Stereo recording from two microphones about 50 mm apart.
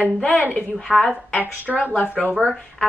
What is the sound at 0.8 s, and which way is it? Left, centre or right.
A woman's voice, centre.